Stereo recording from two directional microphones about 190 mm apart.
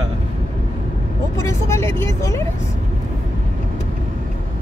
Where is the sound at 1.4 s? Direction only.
15° left (ahead or behind).